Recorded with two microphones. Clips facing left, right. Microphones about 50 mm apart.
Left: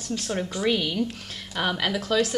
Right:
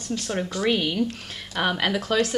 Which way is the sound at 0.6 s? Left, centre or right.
Centre.